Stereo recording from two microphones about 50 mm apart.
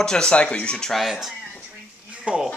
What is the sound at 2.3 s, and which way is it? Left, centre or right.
Speech, right.